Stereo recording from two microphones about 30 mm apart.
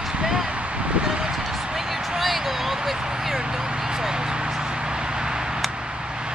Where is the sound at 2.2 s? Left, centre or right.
Centre.